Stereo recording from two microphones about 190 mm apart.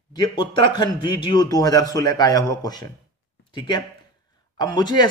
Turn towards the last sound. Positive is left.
turn(degrees=25)  # may be behind; listen again after turning